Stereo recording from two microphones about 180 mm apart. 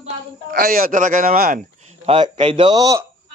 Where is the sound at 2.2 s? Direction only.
30° right (ahead or behind).